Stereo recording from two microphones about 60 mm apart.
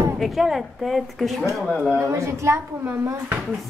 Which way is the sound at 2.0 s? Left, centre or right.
Right.